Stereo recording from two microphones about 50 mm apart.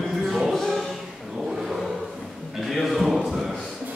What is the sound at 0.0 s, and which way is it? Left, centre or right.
Music, centre.